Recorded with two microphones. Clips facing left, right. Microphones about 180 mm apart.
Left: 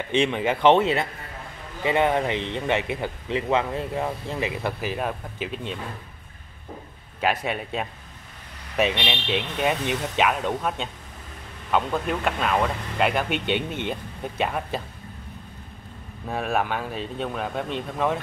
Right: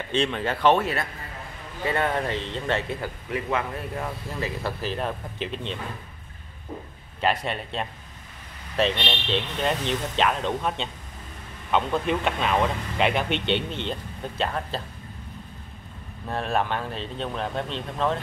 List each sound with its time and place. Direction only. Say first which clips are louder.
0.1 s speech: left 3 dB; 15° left (ahead or behind)
4.9 s speech: left 1 dB; 5° left (ahead or behind)
7.2 s speech: left 1 dB; 10° left (ahead or behind)
16.3 s speech: left 1 dB; 10° left (ahead or behind)